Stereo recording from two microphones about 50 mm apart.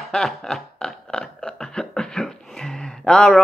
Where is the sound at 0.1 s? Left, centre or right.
Centre.